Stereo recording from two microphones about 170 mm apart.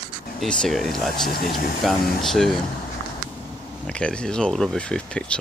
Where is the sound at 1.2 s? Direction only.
55° left (ahead or behind).